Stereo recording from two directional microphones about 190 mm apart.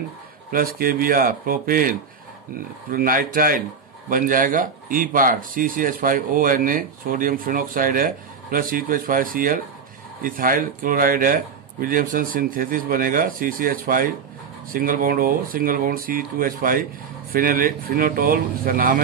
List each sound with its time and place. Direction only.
0.5 s speech: 50° right (ahead or behind)